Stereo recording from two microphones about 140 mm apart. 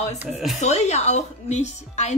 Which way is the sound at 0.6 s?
55° left (ahead or behind).